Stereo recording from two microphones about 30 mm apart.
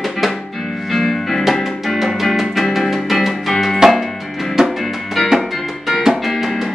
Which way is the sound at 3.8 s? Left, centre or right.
Centre.